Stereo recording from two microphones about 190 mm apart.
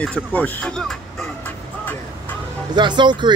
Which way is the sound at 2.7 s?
25° right (ahead or behind).